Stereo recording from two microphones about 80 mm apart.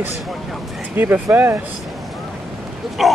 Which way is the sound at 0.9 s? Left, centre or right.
Right.